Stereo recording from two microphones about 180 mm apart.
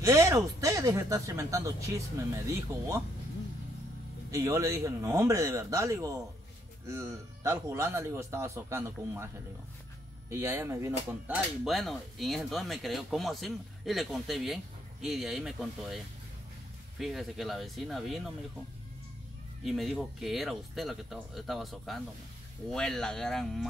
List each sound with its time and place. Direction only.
0.0 s speech: 15° right (ahead or behind)
4.3 s speech: 15° right (ahead or behind)
10.3 s speech: 15° right (ahead or behind)
11.6 s speech: centre (ahead or behind)
17.0 s speech: centre (ahead or behind)
19.6 s speech: centre (ahead or behind)